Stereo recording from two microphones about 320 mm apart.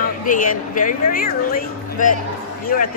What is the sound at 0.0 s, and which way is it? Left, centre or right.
Speech, left.